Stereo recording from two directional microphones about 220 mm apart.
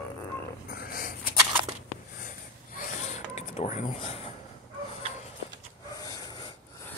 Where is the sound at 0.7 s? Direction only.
40° left (ahead or behind).